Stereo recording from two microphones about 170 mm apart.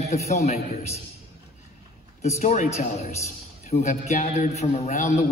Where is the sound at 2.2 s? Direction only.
40° left (ahead or behind).